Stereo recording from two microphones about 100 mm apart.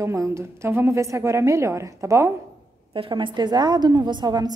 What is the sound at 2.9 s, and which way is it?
A woman's voice, 60° right (ahead or behind).